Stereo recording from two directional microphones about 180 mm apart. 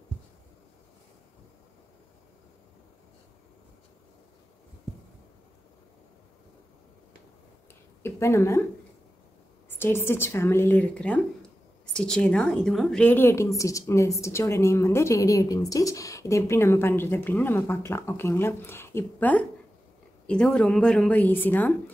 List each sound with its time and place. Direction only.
8.0 s a woman's voice: 15° left (ahead or behind)
9.7 s a woman's voice: 10° left (ahead or behind)